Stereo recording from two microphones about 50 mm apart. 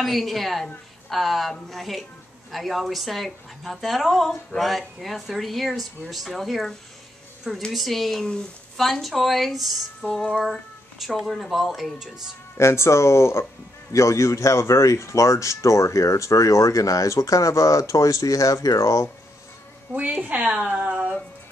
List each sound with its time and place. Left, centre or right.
0.0 s a woman's voice: centre
7.7 s a woman's voice: centre
12.5 s speech: left
13.9 s speech: left
19.9 s a woman's voice: right